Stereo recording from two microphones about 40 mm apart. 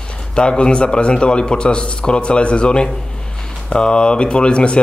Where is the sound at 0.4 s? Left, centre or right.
Left.